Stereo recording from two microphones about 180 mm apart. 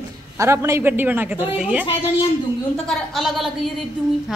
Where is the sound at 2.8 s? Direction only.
Centre (ahead or behind).